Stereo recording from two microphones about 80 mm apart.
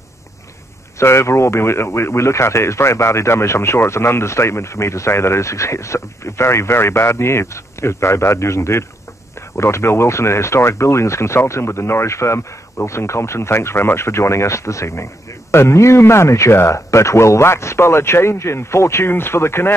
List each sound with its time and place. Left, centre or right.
0.9 s speech: left